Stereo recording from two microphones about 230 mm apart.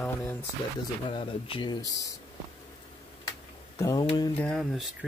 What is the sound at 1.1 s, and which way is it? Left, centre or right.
Speech, left.